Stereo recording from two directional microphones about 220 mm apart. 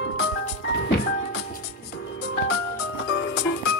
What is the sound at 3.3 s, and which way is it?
Music, 50° left (ahead or behind).